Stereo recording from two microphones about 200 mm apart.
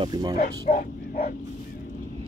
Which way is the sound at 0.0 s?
20° right (ahead or behind).